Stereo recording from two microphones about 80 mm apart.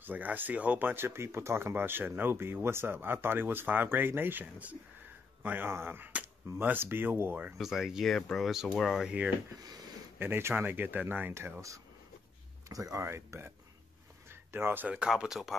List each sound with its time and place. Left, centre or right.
0.0 s speech: right
7.5 s speech: centre
10.1 s speech: right
13.0 s speech: right
15.0 s speech: centre